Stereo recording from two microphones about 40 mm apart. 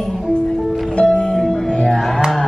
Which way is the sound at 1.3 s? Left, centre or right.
Centre.